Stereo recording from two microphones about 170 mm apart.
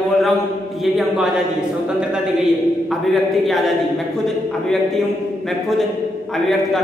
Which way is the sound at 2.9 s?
Centre (ahead or behind).